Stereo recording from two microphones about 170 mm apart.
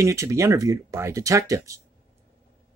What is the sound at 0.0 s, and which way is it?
Speech, 20° right (ahead or behind).